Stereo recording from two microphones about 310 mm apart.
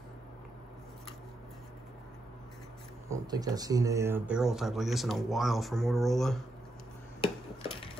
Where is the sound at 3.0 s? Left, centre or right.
Centre.